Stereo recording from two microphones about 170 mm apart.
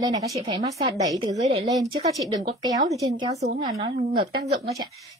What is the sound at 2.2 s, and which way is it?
A woman's voice, 20° right (ahead or behind).